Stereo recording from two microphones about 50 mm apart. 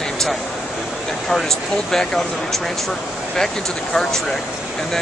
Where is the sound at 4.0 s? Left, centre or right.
Centre.